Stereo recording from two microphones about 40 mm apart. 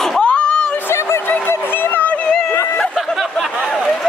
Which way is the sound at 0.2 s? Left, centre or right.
Left.